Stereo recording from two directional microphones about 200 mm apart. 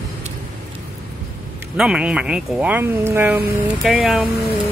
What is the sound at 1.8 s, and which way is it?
Speech, 5° right (ahead or behind).